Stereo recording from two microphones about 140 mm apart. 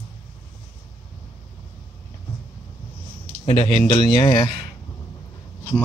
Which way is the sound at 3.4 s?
40° left (ahead or behind).